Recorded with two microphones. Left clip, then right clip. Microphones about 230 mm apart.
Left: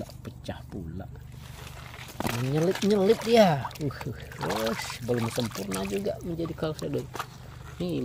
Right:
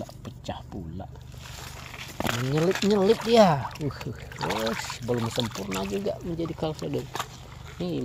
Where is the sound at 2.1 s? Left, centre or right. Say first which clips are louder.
Right 2 dB; centre.